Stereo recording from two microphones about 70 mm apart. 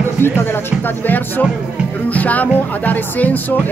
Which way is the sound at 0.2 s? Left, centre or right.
Left.